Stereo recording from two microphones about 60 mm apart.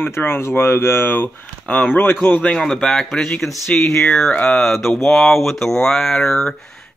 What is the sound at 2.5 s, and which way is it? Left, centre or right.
Speech, centre.